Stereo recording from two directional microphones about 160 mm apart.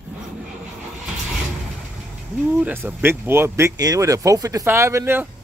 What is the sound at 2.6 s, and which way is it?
Speech, 10° right (ahead or behind).